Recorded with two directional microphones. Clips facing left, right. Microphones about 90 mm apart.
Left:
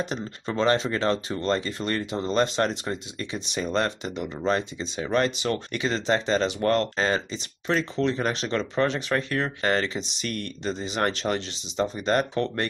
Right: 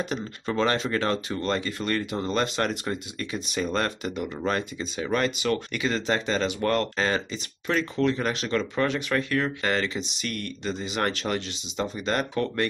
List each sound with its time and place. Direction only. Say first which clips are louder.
0.0 s speech: even; 30° left (ahead or behind)